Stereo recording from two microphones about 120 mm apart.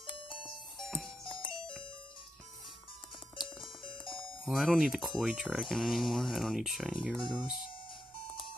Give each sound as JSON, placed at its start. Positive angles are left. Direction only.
{"t": 0.3, "sound": "music", "side_deg": 45}
{"t": 0.8, "sound": "music", "side_deg": 0}
{"t": 4.0, "sound": "music", "side_deg": 45}
{"t": 4.5, "sound": "speech", "side_deg": 0}